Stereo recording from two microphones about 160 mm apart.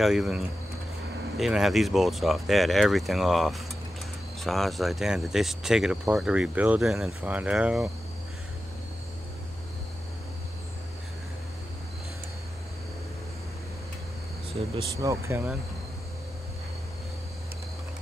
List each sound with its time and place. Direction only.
0.0 s speech: centre (ahead or behind)
15.0 s speech: 20° right (ahead or behind)